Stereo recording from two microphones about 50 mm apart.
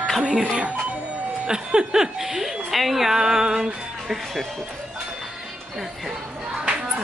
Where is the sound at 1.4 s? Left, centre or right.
Centre.